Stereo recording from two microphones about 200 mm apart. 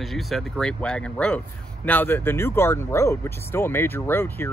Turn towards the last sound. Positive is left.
turn(degrees=10)  # may be behind; listen again after turning